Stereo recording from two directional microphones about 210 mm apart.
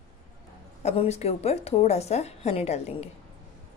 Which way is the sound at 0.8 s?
30° left (ahead or behind).